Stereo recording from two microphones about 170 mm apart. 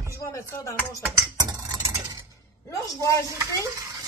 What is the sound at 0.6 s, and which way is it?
Speech, 20° left (ahead or behind).